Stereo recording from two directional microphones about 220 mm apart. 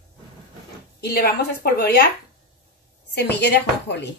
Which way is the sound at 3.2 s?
50° left (ahead or behind).